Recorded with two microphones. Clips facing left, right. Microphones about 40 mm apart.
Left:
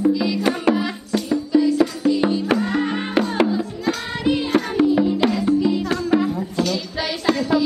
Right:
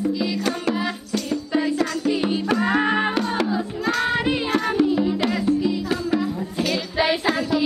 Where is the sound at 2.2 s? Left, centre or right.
Left.